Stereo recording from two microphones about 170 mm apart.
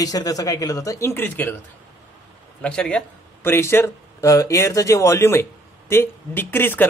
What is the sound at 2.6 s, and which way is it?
A man's voice, 5° left (ahead or behind).